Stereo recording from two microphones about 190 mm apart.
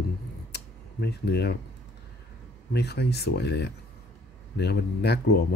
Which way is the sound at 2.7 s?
60° left (ahead or behind).